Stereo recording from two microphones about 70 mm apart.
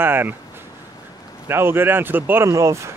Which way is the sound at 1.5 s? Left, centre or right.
Right.